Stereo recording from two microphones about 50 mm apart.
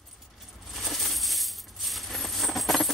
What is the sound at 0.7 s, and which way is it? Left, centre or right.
Coin, centre.